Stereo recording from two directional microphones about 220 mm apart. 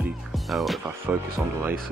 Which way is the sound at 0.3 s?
Centre (ahead or behind).